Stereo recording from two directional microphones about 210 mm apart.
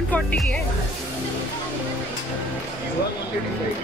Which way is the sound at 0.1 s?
5° left (ahead or behind).